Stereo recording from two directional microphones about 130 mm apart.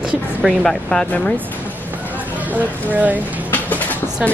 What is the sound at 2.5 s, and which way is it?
Speech, 10° right (ahead or behind).